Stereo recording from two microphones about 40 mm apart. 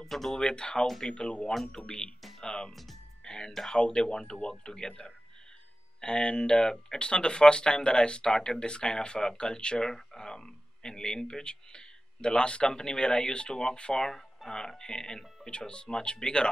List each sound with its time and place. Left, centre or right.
0.0 s speech: centre
0.4 s speech: left
0.8 s speech: centre
1.7 s speech: centre
2.7 s speech: centre
3.3 s music: centre
3.7 s speech: centre